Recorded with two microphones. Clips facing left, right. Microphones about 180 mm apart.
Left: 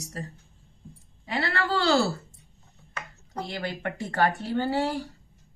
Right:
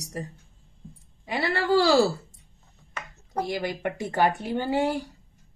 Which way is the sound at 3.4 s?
15° right (ahead or behind).